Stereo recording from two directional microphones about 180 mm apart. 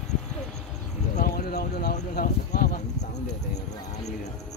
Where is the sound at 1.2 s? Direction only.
55° left (ahead or behind).